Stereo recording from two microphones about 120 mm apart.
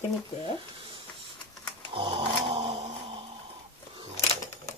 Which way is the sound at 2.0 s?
45° right (ahead or behind).